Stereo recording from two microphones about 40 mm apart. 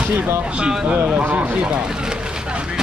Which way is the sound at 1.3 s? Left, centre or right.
Right.